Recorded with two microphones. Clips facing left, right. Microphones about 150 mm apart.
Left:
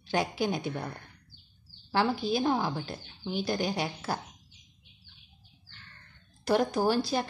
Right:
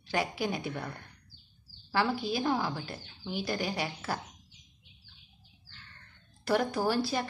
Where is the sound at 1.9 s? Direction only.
25° left (ahead or behind).